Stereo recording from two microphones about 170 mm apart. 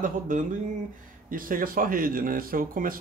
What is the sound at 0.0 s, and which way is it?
Speech, 50° right (ahead or behind).